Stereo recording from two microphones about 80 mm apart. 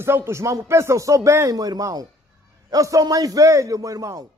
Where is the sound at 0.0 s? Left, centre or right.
Right.